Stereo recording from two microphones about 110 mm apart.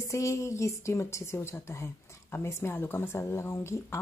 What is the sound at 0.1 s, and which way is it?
A woman's voice, 25° left (ahead or behind).